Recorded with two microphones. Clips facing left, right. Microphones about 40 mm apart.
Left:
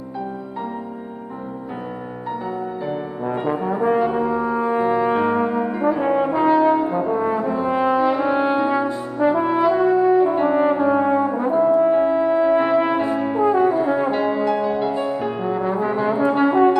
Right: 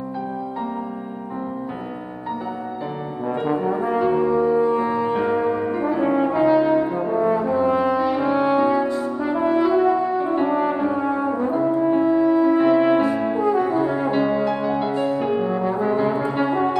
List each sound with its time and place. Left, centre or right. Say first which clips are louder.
3.3 s brass instrument: right 1 dB; centre
11.8 s french horn: left 2 dB; centre
12.2 s brass instrument: even; centre